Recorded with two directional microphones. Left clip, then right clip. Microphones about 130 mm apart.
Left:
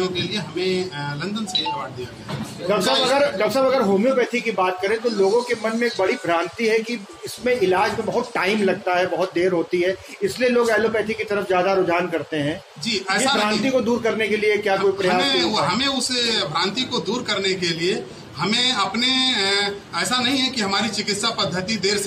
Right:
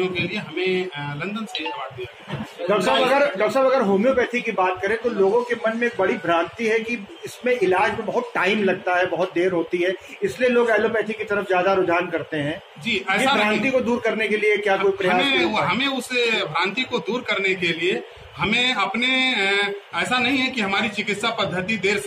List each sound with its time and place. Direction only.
0.0 s a man's voice: 25° left (ahead or behind)
3.0 s a man's voice: 30° left (ahead or behind)